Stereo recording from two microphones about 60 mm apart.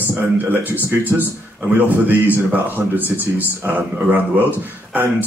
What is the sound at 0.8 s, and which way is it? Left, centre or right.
Speech, right.